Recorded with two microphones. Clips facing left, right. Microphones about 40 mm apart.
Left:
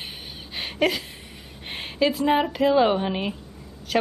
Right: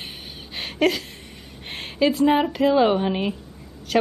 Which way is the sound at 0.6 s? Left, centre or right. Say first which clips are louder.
Right 2 dB; centre.